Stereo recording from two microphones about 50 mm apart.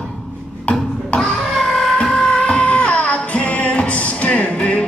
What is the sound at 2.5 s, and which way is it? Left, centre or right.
Music, left.